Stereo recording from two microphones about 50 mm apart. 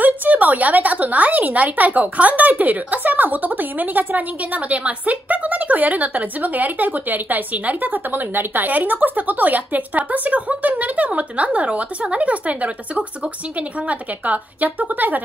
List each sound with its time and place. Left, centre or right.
0.0 s a woman's voice: right